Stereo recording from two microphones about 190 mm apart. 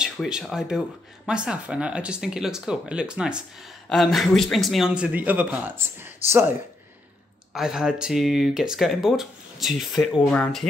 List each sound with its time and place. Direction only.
0.0 s speech: 5° right (ahead or behind)
7.5 s speech: 5° right (ahead or behind)